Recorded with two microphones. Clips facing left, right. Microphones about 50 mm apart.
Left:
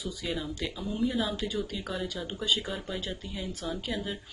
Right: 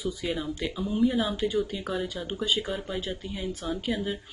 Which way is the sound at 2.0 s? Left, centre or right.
Centre.